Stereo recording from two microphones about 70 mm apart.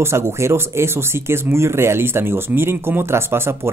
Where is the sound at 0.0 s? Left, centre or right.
Right.